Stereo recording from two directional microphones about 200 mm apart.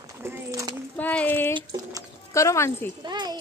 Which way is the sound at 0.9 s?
10° left (ahead or behind).